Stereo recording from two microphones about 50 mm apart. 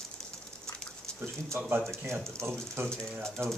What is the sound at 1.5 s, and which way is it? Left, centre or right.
Speech, right.